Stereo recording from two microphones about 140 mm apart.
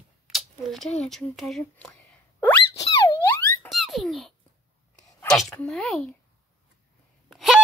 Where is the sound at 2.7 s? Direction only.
20° left (ahead or behind).